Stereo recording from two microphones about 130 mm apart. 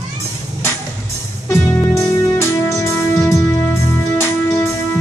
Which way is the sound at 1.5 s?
20° left (ahead or behind).